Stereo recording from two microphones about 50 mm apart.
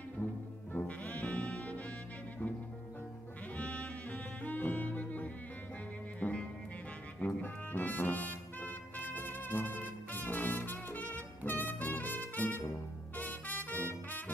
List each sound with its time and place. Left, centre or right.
0.2 s brass instrument: left
3.5 s music: left